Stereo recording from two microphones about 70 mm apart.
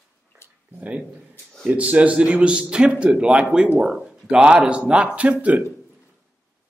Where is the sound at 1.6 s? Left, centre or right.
Right.